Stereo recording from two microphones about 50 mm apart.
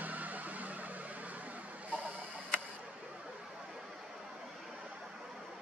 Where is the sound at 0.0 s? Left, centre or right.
Right.